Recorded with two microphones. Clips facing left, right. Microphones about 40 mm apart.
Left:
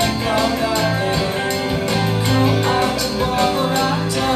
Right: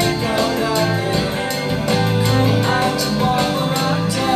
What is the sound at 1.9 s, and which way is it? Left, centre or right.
Music, centre.